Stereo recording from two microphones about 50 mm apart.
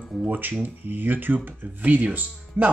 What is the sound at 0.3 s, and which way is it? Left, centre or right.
Speech, right.